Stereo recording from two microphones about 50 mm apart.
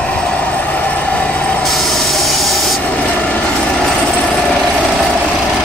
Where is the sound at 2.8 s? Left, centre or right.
Left.